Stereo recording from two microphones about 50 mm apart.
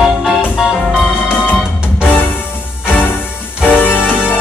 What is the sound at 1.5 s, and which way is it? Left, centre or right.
Music, left.